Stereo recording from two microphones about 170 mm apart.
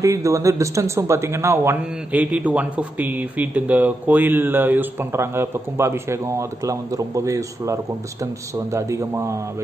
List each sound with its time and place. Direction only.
0.0 s speech: 20° right (ahead or behind)